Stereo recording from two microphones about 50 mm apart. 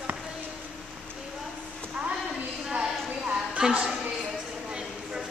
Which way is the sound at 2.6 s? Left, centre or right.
Centre.